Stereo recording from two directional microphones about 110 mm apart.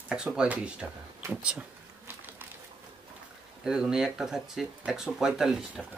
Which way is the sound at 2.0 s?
20° right (ahead or behind).